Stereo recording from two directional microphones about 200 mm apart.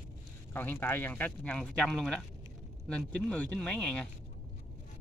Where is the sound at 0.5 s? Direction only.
10° left (ahead or behind).